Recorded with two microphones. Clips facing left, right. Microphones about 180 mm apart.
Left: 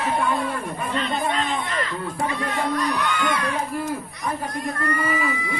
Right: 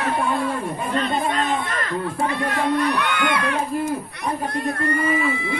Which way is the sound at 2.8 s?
60° right (ahead or behind).